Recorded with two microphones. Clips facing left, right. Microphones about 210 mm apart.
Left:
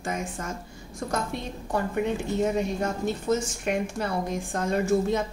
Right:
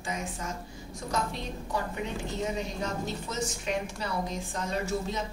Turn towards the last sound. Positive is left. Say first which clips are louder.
# left 8 dB
turn(degrees=50)  # may be behind; listen again after turning